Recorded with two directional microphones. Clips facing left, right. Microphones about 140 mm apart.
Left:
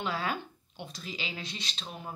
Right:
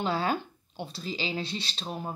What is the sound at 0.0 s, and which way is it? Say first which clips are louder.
Speech: right 5 dB; 30° right (ahead or behind).